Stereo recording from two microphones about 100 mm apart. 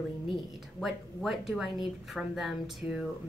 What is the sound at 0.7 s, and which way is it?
Speech, centre (ahead or behind).